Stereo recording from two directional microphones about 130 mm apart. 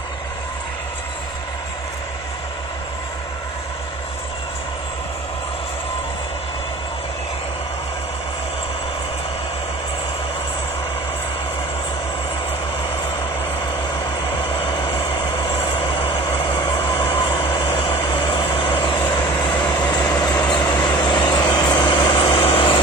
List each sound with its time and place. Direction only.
14.4 s vehicle: 45° left (ahead or behind)